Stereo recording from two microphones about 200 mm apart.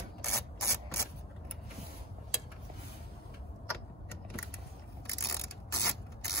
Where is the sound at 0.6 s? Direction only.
15° left (ahead or behind).